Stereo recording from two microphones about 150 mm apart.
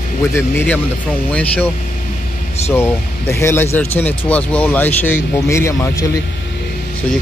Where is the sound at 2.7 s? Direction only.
15° left (ahead or behind).